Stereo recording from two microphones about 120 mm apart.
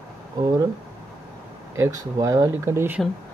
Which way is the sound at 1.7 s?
30° right (ahead or behind).